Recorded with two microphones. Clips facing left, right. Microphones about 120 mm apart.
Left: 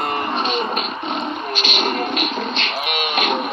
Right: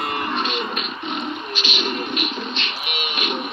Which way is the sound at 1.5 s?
50° left (ahead or behind).